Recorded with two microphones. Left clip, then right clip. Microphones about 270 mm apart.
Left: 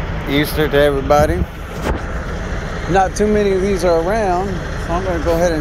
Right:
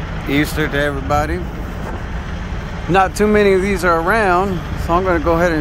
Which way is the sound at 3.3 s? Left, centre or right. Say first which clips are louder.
Right 2 dB; centre.